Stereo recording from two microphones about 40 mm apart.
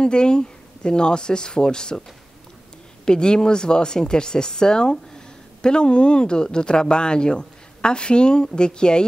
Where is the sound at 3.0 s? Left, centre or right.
Centre.